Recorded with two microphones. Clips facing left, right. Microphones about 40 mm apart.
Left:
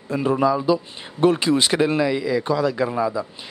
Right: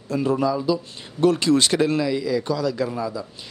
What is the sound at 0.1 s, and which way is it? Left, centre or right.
Speech, left.